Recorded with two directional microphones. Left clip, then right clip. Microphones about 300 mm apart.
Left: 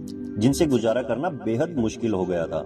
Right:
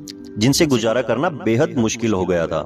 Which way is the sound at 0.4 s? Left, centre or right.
Right.